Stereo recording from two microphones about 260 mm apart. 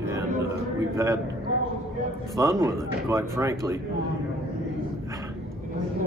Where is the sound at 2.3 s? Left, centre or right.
Centre.